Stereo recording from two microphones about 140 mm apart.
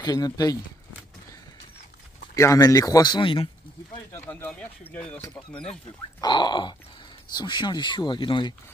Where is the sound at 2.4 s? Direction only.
20° left (ahead or behind); by 3.5 s 35° left (ahead or behind).